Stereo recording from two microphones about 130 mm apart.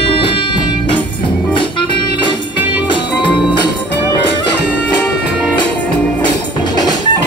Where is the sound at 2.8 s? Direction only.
40° left (ahead or behind).